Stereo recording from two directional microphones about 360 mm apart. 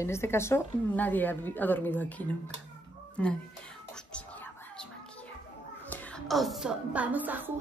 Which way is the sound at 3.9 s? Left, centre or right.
Centre.